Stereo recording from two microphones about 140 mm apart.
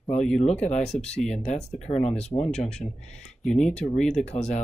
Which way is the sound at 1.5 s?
55° left (ahead or behind).